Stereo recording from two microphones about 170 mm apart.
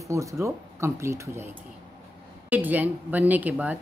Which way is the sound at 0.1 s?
20° right (ahead or behind).